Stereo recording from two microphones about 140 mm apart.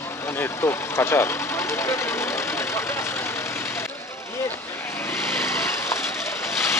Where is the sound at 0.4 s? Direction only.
15° left (ahead or behind).